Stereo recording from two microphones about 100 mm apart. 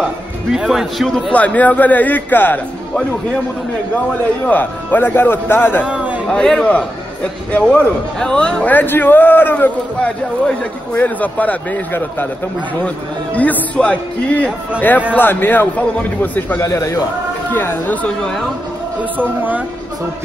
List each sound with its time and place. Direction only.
0.0 s a man's voice: 5° right (ahead or behind)
1.3 s a man's voice: 15° left (ahead or behind)
3.9 s a man's voice: 15° left (ahead or behind)
5.9 s chatter: 10° right (ahead or behind)
6.2 s a man's voice: 10° left (ahead or behind)
16.6 s a man's voice: 35° left (ahead or behind)
17.5 s a man's voice: 20° left (ahead or behind)
19.1 s speech: 15° right (ahead or behind)